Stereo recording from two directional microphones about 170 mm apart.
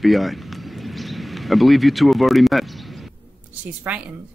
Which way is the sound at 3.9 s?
10° right (ahead or behind).